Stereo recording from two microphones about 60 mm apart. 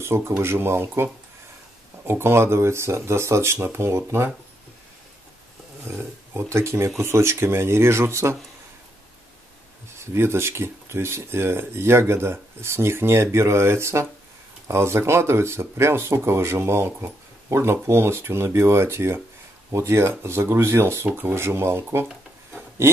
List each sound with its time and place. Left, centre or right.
0.0 s speech: right
5.9 s speech: right
9.9 s speech: right
21.5 s speech: right